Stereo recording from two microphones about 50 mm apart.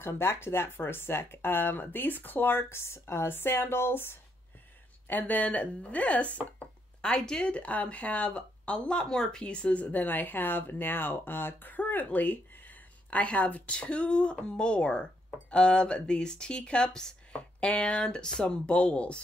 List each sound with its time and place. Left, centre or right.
0.0 s speech: left
2.7 s speech: left
5.0 s speech: left
7.2 s a woman's voice: centre
10.0 s a woman's voice: left